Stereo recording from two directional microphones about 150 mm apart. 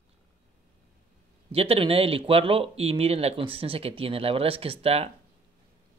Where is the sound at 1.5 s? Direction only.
40° right (ahead or behind).